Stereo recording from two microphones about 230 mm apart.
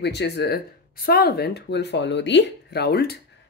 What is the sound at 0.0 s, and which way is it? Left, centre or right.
Speech, left.